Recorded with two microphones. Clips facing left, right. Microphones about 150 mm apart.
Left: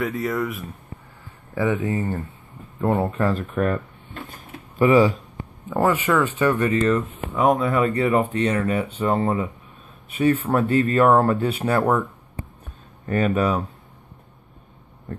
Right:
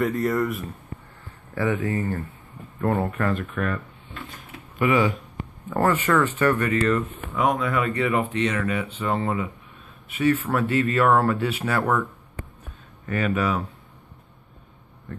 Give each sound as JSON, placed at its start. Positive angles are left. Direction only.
{"t": 0.0, "sound": "speech", "side_deg": 0}
{"t": 1.5, "sound": "speech", "side_deg": 20}
{"t": 5.7, "sound": "speech", "side_deg": 10}
{"t": 7.3, "sound": "speech", "side_deg": 35}
{"t": 13.0, "sound": "speech", "side_deg": 35}